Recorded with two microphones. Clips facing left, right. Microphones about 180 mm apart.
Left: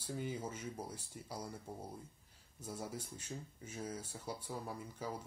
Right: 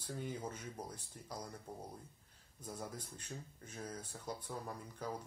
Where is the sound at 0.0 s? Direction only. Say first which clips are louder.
Left 2 dB; 10° left (ahead or behind).